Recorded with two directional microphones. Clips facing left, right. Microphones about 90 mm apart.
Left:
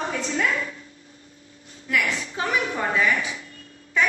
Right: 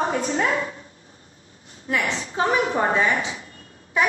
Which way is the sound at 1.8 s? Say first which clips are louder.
Even; 30° right (ahead or behind).